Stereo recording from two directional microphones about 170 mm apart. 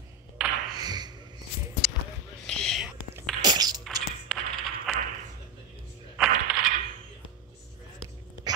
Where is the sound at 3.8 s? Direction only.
Centre (ahead or behind).